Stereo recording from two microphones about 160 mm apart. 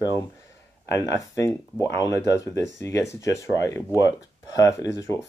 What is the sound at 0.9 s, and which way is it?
Speech, 20° left (ahead or behind).